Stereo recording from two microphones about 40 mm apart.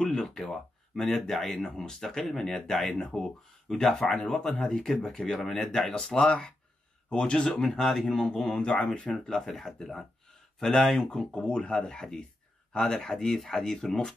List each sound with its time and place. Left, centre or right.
0.0 s speech: centre
8.5 s speech: left; by 10.0 s centre
11.1 s speech: centre